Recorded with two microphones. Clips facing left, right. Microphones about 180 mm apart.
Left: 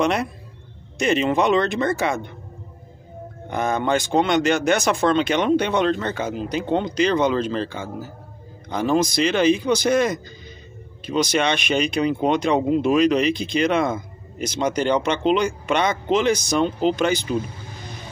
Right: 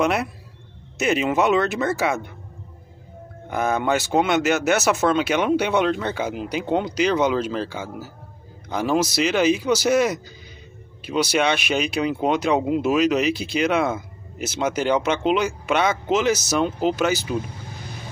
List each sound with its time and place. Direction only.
0.0 s speech: 5° right (ahead or behind)
3.4 s speech: 5° right (ahead or behind)